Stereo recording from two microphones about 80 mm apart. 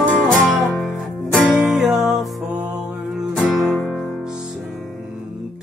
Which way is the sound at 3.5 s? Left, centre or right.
Centre.